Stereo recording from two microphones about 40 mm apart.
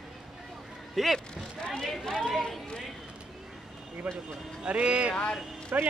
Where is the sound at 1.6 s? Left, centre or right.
Centre.